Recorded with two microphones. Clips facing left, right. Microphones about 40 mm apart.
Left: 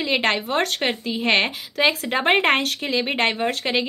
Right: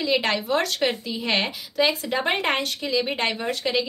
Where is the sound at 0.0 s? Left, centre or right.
Left.